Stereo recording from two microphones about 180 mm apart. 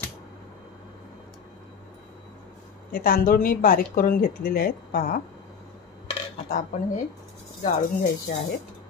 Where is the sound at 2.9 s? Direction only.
55° left (ahead or behind).